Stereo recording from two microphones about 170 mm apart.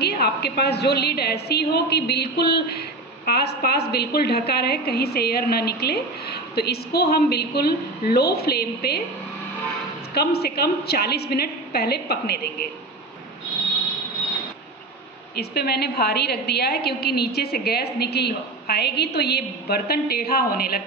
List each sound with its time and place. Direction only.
0.0 s a woman's voice: 70° left (ahead or behind)
10.1 s a woman's voice: 70° left (ahead or behind)
15.3 s a woman's voice: 70° left (ahead or behind)